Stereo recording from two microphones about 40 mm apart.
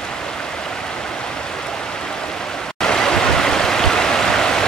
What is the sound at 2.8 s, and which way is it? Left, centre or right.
Stream, centre.